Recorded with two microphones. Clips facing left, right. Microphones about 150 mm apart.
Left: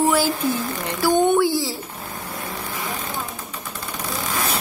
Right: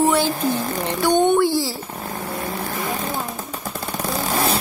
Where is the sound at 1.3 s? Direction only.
Centre (ahead or behind).